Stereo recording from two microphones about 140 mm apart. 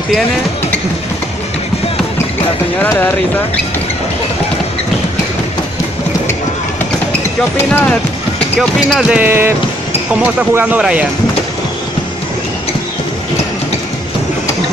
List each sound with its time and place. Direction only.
2.8 s speech: 15° left (ahead or behind)
7.5 s speech: 15° left (ahead or behind)
8.5 s speech: centre (ahead or behind)
9.2 s speech: 15° right (ahead or behind)